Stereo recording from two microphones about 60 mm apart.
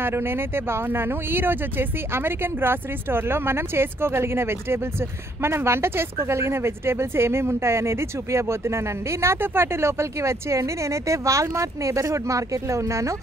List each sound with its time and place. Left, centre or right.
0.0 s speech: right